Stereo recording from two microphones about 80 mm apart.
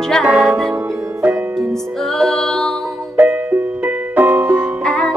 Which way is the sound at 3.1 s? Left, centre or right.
Right.